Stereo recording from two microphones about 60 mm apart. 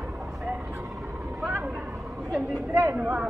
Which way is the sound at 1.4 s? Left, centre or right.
Right.